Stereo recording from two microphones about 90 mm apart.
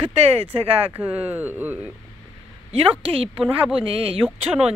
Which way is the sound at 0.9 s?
15° right (ahead or behind).